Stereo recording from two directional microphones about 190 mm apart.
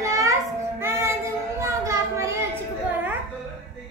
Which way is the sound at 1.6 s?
15° right (ahead or behind).